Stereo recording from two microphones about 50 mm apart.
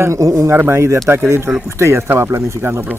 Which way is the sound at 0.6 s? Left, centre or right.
Right.